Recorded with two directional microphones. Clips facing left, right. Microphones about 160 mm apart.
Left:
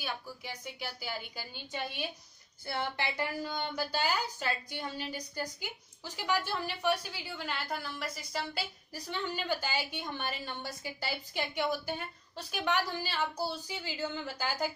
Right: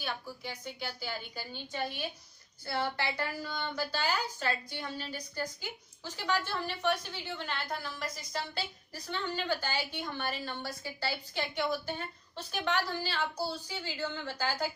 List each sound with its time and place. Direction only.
0.0 s a woman's voice: 10° left (ahead or behind)